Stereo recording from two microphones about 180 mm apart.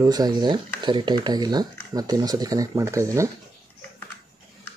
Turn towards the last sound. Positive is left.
turn(degrees=-15)  # may be behind; listen again after turning